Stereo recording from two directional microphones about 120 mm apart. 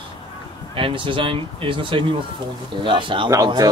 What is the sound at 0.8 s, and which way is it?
Speech, 45° right (ahead or behind).